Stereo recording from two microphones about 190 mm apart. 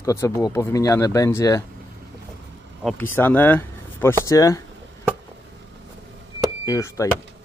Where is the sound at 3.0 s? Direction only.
10° left (ahead or behind).